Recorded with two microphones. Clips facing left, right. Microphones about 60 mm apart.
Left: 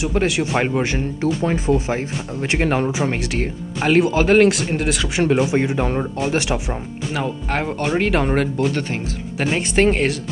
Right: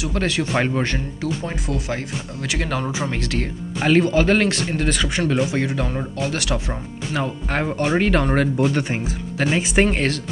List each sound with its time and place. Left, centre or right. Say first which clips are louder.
0.1 s speech: left 1 dB; centre
1.5 s speech: left 7 dB; left
3.2 s speech: left 2 dB; centre
5.4 s speech: left 3 dB; left
6.7 s speech: left 1 dB; centre
9.4 s speech: left 1 dB; centre